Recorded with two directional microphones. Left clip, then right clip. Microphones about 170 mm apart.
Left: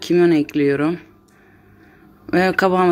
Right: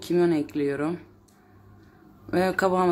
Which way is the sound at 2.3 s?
20° left (ahead or behind).